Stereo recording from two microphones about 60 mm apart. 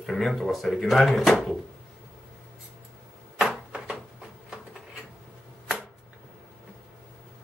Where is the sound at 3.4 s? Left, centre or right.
Centre.